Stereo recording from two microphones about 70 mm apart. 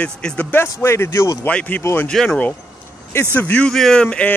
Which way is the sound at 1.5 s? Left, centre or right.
Left.